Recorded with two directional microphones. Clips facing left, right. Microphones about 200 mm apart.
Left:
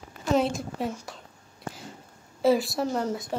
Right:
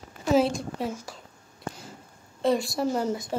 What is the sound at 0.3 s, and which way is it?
Speech, centre (ahead or behind).